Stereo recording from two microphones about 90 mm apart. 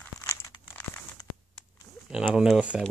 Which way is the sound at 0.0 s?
30° left (ahead or behind).